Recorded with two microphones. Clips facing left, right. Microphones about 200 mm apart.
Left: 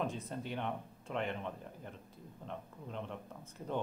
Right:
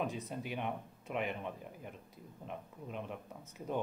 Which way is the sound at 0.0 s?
5° right (ahead or behind).